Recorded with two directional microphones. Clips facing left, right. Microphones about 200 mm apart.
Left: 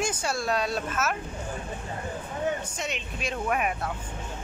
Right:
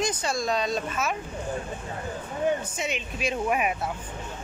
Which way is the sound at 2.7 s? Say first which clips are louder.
Right 3 dB; 5° right (ahead or behind).